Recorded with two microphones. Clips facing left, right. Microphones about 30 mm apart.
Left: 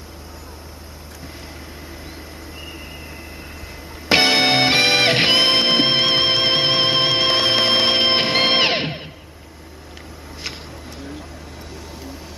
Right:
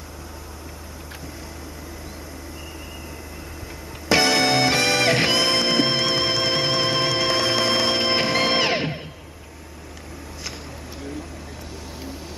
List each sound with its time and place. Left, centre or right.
4.1 s music: left